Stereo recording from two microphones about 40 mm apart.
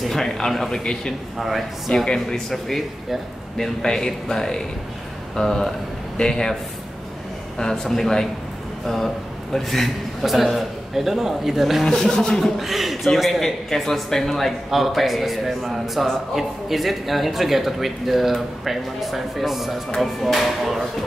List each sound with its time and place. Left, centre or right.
0.0 s speech: centre
1.4 s a man's voice: centre
7.5 s a man's voice: centre
11.8 s speech: centre
12.5 s a man's voice: centre